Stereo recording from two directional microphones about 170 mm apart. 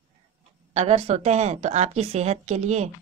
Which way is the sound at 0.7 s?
40° right (ahead or behind).